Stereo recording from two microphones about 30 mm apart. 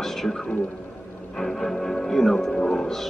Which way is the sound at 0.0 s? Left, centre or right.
Centre.